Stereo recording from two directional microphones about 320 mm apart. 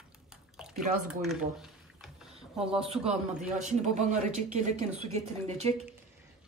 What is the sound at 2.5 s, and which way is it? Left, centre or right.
Speech, centre.